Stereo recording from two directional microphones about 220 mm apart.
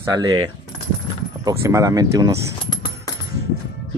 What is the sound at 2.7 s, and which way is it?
Coin, 20° left (ahead or behind).